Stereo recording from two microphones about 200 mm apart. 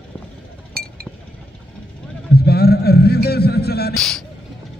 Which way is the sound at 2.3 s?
50° left (ahead or behind).